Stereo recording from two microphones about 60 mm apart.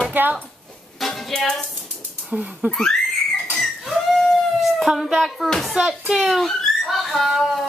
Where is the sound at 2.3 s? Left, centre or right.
Right.